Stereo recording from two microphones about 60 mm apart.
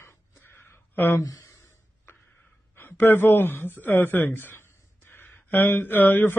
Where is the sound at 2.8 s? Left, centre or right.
Left.